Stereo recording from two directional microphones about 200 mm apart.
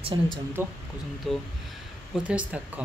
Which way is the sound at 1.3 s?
Centre (ahead or behind).